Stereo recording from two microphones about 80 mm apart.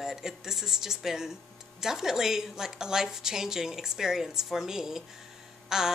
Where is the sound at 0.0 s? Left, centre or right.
Centre.